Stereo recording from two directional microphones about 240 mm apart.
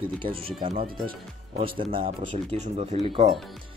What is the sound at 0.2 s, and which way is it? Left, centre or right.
Speech, right.